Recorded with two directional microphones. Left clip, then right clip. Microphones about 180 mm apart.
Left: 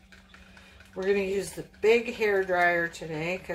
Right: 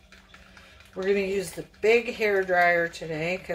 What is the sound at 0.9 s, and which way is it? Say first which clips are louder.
Speech: right 1 dB; centre (ahead or behind).